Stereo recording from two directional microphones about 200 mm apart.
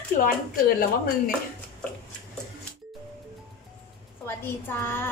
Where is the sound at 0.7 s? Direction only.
50° left (ahead or behind).